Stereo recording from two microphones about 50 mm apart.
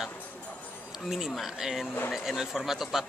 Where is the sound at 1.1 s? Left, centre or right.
Centre.